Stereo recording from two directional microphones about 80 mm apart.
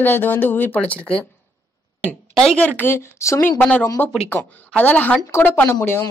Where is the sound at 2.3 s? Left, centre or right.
Centre.